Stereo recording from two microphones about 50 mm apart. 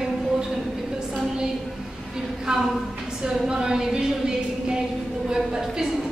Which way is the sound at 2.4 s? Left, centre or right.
Centre.